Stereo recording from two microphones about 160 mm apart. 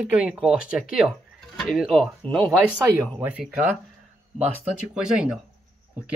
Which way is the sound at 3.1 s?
10° right (ahead or behind).